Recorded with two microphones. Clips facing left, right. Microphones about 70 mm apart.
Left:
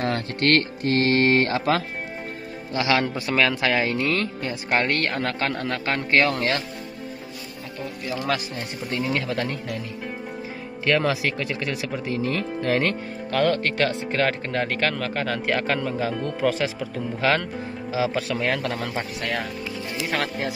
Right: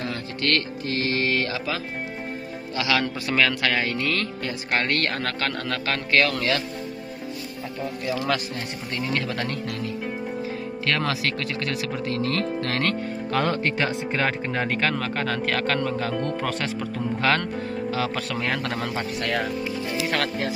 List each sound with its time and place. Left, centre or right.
0.0 s music: left
2.7 s a man's voice: left
3.3 s speech: centre
5.1 s a man's voice: centre
8.3 s speech: centre
10.9 s speech: centre